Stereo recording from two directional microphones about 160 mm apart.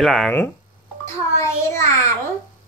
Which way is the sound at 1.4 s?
20° left (ahead or behind).